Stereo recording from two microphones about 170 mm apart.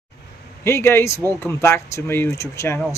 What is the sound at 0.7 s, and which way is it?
Speech, 15° left (ahead or behind).